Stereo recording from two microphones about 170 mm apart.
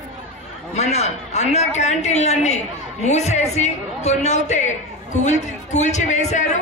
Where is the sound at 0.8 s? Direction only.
40° left (ahead or behind).